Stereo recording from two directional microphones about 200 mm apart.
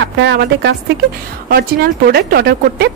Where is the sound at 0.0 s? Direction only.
60° right (ahead or behind).